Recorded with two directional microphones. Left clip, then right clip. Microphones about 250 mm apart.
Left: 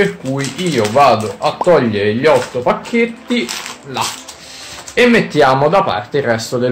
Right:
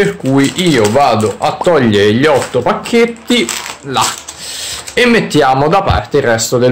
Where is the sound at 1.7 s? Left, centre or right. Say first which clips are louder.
Right 5 dB; right.